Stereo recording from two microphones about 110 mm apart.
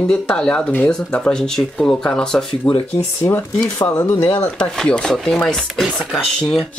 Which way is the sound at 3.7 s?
20° left (ahead or behind).